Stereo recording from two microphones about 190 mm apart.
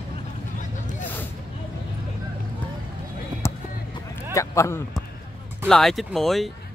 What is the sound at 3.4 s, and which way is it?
Basketball bounce, 15° left (ahead or behind).